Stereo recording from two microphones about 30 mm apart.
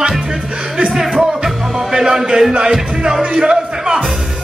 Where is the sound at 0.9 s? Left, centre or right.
Centre.